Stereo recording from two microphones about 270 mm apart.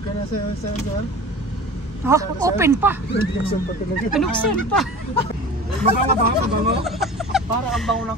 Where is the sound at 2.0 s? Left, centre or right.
Centre.